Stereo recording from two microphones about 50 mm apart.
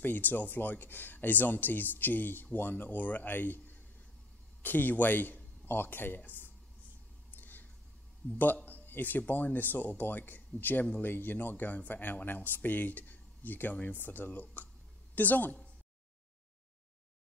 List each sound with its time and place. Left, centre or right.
0.0 s a man's voice: left
7.2 s a sound: left
8.2 s speech: left